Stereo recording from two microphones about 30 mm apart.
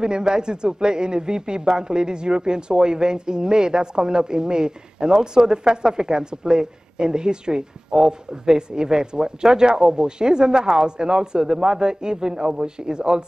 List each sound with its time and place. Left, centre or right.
0.0 s speech: right